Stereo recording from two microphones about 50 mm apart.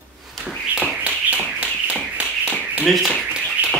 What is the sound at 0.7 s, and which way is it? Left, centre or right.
Tap, right.